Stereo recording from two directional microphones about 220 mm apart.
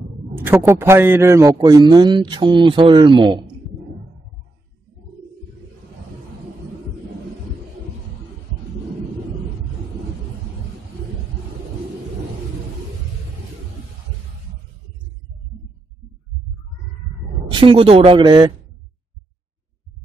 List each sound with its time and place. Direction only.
0.4 s a man's voice: 10° right (ahead or behind)
17.5 s a man's voice: 20° right (ahead or behind)